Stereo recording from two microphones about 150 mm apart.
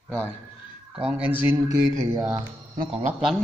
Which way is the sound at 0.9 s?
5° right (ahead or behind).